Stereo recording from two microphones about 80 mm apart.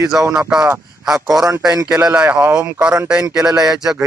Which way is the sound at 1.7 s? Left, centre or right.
Right.